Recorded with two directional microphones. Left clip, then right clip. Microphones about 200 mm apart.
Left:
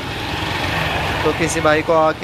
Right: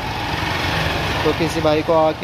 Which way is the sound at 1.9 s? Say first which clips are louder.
Even; 5° right (ahead or behind).